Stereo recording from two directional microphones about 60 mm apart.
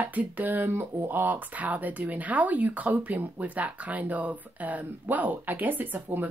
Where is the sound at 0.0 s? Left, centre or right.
Right.